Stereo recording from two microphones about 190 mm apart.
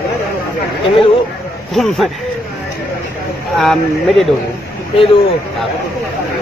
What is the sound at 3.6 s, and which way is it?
Speech, centre (ahead or behind).